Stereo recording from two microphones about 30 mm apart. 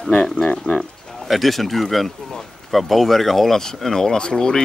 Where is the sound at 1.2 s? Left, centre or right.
Centre.